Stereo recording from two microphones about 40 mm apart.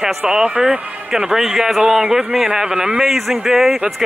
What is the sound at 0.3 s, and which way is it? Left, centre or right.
A man's voice, centre.